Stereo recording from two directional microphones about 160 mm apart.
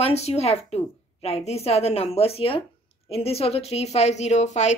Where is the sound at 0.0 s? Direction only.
40° left (ahead or behind).